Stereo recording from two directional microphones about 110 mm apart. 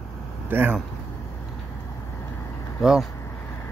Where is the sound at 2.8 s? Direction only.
5° right (ahead or behind).